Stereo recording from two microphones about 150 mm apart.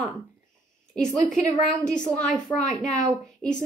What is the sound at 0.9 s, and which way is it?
A woman's voice, 5° left (ahead or behind).